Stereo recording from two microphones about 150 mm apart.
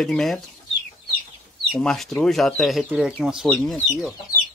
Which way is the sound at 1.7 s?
Centre (ahead or behind).